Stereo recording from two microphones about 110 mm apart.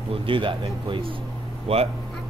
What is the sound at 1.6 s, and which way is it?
Speech, 65° right (ahead or behind).